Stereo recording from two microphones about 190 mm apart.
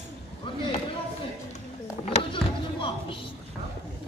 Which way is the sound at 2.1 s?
30° left (ahead or behind).